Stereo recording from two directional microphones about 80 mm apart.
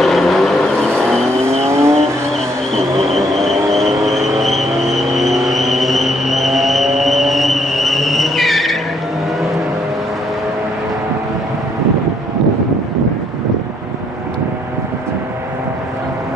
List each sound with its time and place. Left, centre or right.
0.0 s vehicle: centre
1.6 s vehicle: right
2.7 s vehicle: centre